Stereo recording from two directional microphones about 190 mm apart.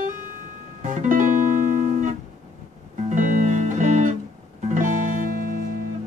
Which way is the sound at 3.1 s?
40° right (ahead or behind).